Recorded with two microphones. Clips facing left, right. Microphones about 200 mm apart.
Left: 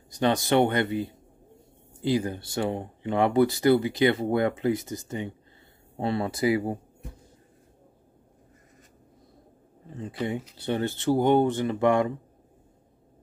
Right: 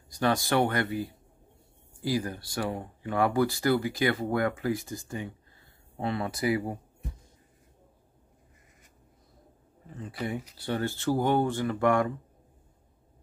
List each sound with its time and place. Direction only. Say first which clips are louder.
0.1 s speech: left 3 dB; 20° left (ahead or behind)
10.6 s speech: left 2 dB; 20° left (ahead or behind)